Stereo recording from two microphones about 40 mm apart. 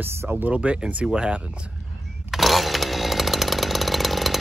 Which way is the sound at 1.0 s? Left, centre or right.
Right.